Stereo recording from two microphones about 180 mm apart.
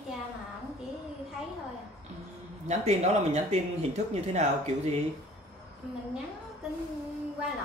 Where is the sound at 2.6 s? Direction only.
40° right (ahead or behind).